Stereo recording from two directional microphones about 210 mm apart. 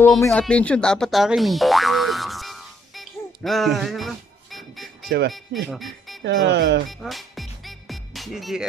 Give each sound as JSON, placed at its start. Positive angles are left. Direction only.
{"t": 0.0, "sound": "boing", "side_deg": 5}
{"t": 5.7, "sound": "speech", "side_deg": 0}
{"t": 6.2, "sound": "speech", "side_deg": -55}
{"t": 6.9, "sound": "music", "side_deg": 0}